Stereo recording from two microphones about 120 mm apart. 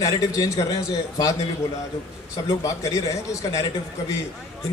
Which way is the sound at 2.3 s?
25° left (ahead or behind).